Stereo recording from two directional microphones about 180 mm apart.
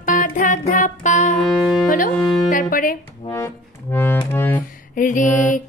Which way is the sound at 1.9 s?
50° left (ahead or behind).